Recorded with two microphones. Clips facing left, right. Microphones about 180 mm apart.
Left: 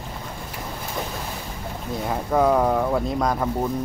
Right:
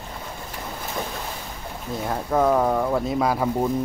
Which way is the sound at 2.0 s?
Centre (ahead or behind).